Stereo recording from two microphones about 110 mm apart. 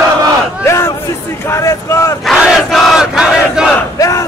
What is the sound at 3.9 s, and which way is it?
Crowd, 30° left (ahead or behind).